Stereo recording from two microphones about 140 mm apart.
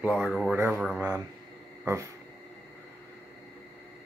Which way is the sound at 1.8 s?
20° right (ahead or behind).